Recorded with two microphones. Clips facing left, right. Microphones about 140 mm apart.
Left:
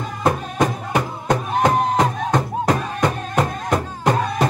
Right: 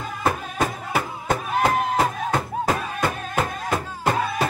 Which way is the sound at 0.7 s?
5° right (ahead or behind).